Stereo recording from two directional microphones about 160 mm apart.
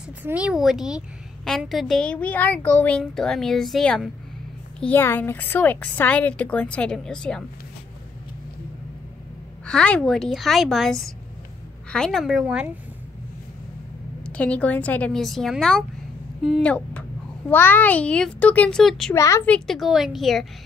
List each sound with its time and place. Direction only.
0.2 s a woman's voice: 10° right (ahead or behind)
9.7 s a woman's voice: 5° left (ahead or behind)
14.2 s a woman's voice: 10° left (ahead or behind)
19.1 s a woman's voice: 20° left (ahead or behind)
19.4 s a woman's voice: 5° left (ahead or behind)